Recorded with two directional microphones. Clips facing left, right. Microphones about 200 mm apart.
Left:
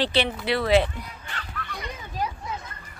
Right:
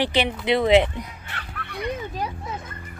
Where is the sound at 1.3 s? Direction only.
60° right (ahead or behind).